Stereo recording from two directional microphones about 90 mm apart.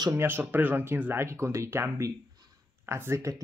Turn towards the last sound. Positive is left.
turn(degrees=-35)  # may be behind; listen again after turning